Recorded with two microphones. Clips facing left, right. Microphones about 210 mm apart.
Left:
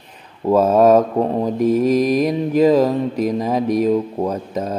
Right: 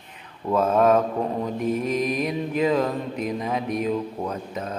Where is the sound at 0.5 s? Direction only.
35° left (ahead or behind).